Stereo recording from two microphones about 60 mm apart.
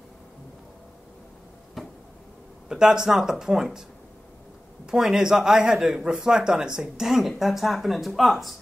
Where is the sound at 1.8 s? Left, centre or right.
Centre.